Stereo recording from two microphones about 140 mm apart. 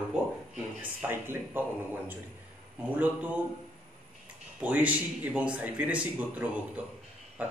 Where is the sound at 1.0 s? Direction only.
15° right (ahead or behind).